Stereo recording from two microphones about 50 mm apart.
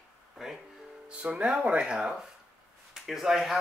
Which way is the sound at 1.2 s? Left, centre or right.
Right.